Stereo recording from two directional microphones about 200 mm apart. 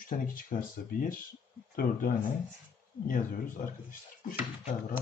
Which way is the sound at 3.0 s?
45° left (ahead or behind).